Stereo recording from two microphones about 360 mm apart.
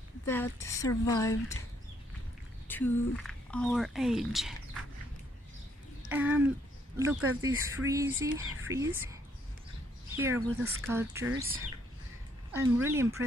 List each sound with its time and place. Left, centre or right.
0.2 s a woman's voice: centre
2.7 s speech: centre
6.0 s speech: centre
11.2 s speech: right
12.4 s speech: centre